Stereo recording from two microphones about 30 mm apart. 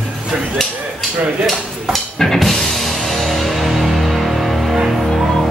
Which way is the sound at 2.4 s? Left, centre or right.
Centre.